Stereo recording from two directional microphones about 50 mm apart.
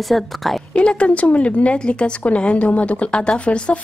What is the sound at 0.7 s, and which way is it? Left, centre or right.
Speech, left.